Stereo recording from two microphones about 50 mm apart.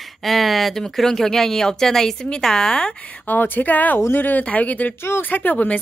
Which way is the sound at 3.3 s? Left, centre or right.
Left.